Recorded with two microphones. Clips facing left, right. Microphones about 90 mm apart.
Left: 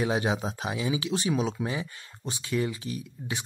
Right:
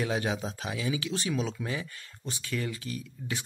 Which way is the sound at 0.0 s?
20° left (ahead or behind).